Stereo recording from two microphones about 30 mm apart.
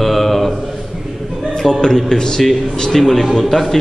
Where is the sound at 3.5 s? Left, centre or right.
Centre.